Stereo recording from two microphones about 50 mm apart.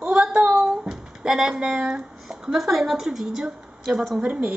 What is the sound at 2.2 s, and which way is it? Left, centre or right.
A woman's voice, centre.